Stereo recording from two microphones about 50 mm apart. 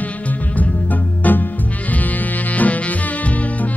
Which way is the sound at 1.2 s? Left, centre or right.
Left.